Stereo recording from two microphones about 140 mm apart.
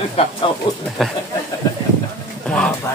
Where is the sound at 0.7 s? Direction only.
35° left (ahead or behind).